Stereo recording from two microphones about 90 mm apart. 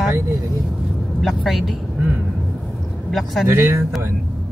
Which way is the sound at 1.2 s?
Centre (ahead or behind).